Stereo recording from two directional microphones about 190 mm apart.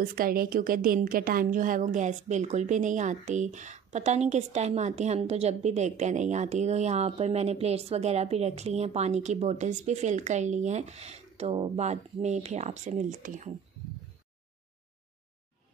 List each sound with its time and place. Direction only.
0.0 s a woman's voice: 50° right (ahead or behind)